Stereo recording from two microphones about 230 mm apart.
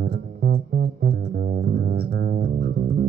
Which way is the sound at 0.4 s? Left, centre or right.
Right.